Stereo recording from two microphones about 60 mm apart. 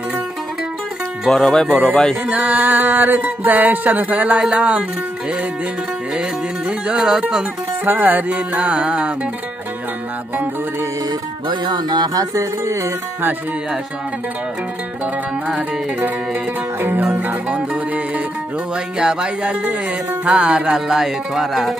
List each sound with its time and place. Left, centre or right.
1.3 s speech: centre
2.2 s music: right
7.0 s music: centre
7.8 s music: right
12.0 s music: right
16.8 s music: right
18.9 s music: centre